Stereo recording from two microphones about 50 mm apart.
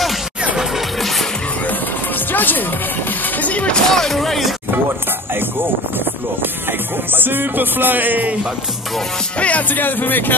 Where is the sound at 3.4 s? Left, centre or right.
Left.